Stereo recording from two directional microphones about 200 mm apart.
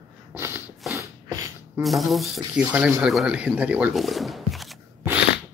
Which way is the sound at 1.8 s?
Centre (ahead or behind).